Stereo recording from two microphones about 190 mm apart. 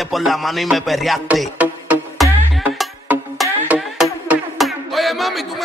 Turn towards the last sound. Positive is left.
turn(degrees=0)  # may be behind; listen again after turning